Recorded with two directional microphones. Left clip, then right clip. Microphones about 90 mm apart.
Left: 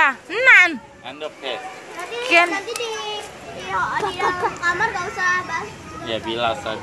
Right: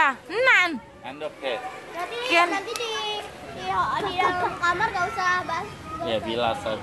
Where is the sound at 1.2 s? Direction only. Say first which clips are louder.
Left 1 dB; 90° right.